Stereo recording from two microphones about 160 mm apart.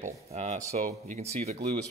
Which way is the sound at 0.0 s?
45° right (ahead or behind).